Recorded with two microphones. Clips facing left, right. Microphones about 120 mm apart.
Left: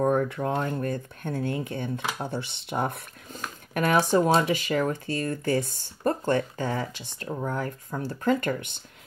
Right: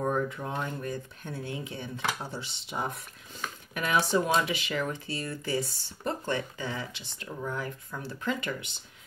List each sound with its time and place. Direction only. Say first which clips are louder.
0.0 s speech: left 6 dB; 65° left (ahead or behind)